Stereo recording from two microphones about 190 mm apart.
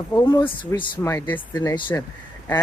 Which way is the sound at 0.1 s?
20° left (ahead or behind).